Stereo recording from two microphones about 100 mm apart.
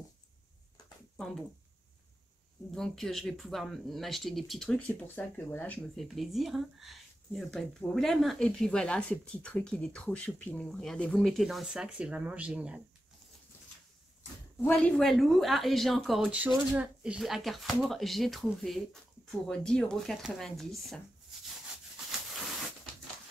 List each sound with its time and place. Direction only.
2.7 s speech: 5° left (ahead or behind)
4.7 s speech: 15° left (ahead or behind)
5.9 s speech: centre (ahead or behind)
14.7 s speech: 10° left (ahead or behind)
16.3 s speech: 15° right (ahead or behind)
17.2 s speech: centre (ahead or behind)